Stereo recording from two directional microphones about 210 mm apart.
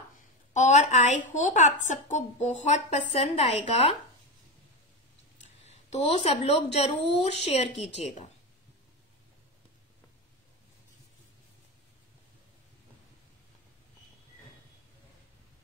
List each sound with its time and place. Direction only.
0.5 s a woman's voice: 35° left (ahead or behind)
5.4 s speech: 30° left (ahead or behind)